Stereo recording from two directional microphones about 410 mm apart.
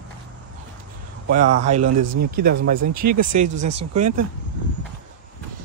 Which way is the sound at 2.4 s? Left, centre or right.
Right.